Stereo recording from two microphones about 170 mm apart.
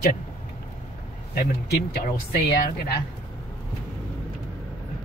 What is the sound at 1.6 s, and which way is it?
Speech, 70° left (ahead or behind).